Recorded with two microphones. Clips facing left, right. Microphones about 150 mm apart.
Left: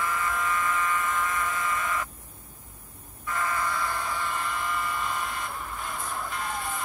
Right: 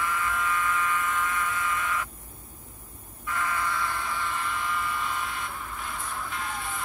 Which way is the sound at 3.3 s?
40° left (ahead or behind).